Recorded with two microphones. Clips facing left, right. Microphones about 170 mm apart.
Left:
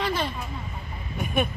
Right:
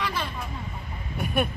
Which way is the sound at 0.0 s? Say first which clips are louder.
Left 4 dB; 30° left (ahead or behind).